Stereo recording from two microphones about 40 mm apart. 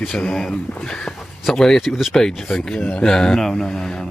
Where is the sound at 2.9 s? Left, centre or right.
Centre.